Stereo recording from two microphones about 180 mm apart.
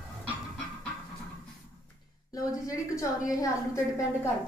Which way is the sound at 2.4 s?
20° left (ahead or behind).